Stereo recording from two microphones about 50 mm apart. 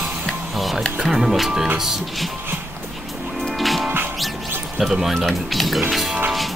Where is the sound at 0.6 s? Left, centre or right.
Centre.